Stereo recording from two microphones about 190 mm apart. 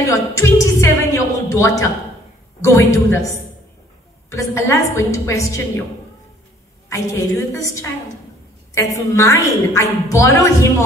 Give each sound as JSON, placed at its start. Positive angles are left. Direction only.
{"t": 0.0, "sound": "a sound", "side_deg": 15}
{"t": 2.6, "sound": "a woman's voice", "side_deg": 15}
{"t": 6.9, "sound": "a woman's voice", "side_deg": 15}